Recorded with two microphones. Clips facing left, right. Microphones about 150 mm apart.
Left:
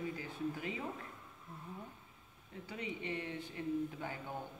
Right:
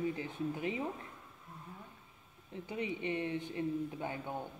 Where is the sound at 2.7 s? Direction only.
20° right (ahead or behind).